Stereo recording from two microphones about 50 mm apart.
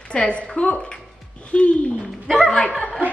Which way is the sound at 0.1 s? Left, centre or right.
Left.